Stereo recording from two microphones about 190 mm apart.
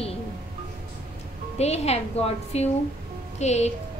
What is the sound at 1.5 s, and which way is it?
A woman's voice, 35° left (ahead or behind).